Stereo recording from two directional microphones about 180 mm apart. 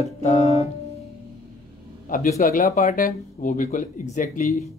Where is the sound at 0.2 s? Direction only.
40° left (ahead or behind).